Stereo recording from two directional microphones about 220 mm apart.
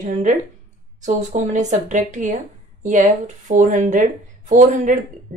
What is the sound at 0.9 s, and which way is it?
A woman's voice, 35° right (ahead or behind).